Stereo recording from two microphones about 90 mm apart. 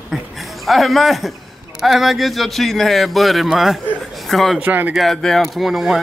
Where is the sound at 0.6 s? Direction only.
Centre (ahead or behind).